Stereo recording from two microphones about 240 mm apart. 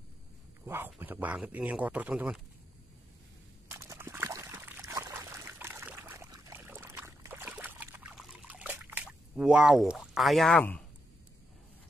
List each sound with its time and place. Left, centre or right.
0.7 s a man's voice: centre
3.7 s trickle: centre